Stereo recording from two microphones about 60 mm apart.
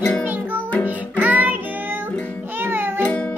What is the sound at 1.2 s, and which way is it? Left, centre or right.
Music, right.